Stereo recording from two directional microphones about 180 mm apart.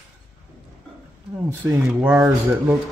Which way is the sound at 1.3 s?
5° right (ahead or behind).